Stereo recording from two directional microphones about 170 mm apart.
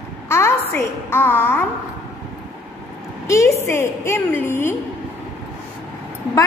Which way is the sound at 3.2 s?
15° left (ahead or behind).